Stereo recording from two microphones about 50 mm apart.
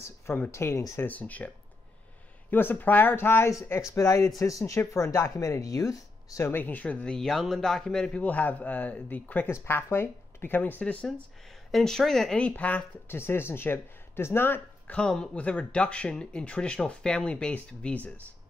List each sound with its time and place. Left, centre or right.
0.5 s speech: left
1.0 s speech: left
2.5 s speech: left
3.9 s speech: left
6.5 s speech: left
7.1 s speech: centre
8.1 s speech: left
9.5 s speech: left
10.8 s speech: left
11.7 s speech: centre
12.4 s speech: left
13.1 s speech: left
14.9 s speech: centre